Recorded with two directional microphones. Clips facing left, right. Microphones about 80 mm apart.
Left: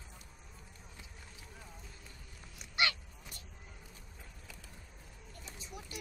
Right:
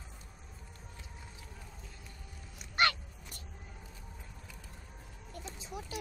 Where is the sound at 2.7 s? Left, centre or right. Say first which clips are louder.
Right 5 dB; right.